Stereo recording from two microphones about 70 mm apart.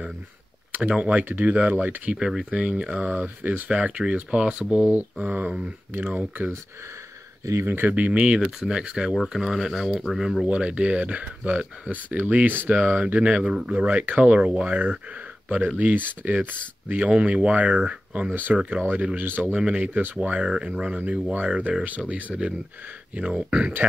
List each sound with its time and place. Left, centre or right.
0.8 s speech: centre
2.1 s speech: centre
7.6 s speech: right; by 9.1 s centre
9.1 s speech: centre
10.4 s speech: centre